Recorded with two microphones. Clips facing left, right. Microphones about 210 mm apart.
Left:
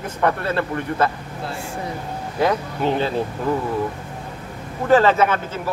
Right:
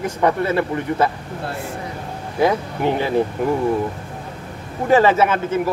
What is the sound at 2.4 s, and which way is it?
Speech, 15° right (ahead or behind).